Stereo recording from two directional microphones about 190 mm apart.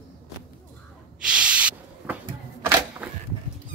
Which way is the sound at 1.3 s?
5° right (ahead or behind).